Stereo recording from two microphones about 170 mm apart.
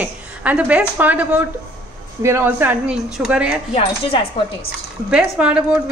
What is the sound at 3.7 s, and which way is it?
Speech, 35° left (ahead or behind).